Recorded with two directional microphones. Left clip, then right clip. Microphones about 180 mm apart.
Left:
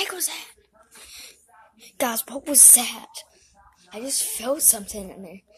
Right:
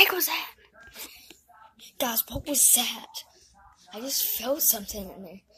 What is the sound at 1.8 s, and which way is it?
Speech, 20° left (ahead or behind).